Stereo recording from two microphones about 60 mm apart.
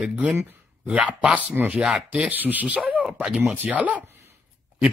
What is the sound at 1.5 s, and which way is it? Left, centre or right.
Speech, right.